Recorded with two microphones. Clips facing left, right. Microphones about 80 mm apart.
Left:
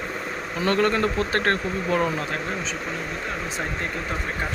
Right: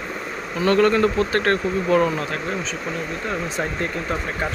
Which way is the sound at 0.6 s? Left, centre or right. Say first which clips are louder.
Right 5 dB; left.